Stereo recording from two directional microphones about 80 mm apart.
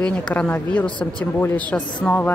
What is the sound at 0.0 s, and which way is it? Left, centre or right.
Speech, centre.